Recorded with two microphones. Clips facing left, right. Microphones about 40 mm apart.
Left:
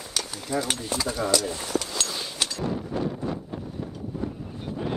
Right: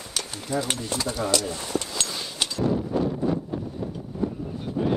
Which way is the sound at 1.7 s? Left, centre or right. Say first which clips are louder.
Left 1 dB; left.